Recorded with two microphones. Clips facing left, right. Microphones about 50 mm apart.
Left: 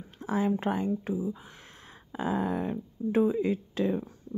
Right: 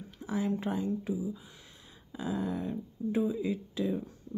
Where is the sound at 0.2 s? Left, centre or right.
Left.